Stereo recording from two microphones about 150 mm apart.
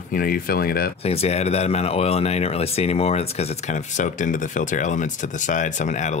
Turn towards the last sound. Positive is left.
turn(degrees=50)  # may be behind; listen again after turning